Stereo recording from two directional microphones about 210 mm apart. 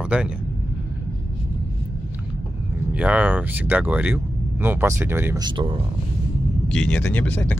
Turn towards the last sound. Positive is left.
turn(degrees=5)  # may be behind; listen again after turning